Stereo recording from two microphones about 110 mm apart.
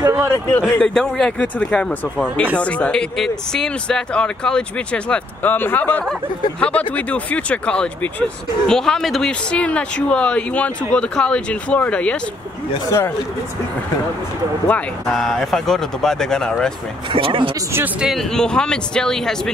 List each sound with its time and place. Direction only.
0.3 s speech: 20° left (ahead or behind)
0.7 s speech: 5° left (ahead or behind)
15.0 s speech: 5° left (ahead or behind)
17.1 s speech: 50° right (ahead or behind)
17.7 s speech: 10° right (ahead or behind)
18.1 s speech: 5° left (ahead or behind)